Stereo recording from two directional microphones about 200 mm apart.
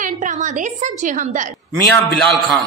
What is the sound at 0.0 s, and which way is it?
A woman's voice, 40° right (ahead or behind).